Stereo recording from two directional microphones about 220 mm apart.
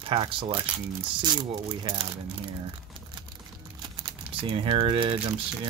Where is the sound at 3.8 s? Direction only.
25° right (ahead or behind).